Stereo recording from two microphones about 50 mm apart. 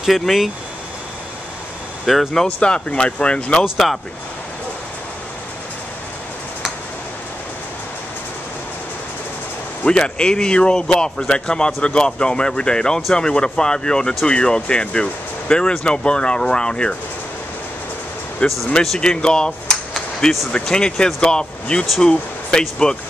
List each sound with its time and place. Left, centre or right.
0.0 s speech: centre
2.0 s speech: centre
2.4 s speech: left
3.7 s speech: centre
9.8 s speech: centre
18.4 s speech: left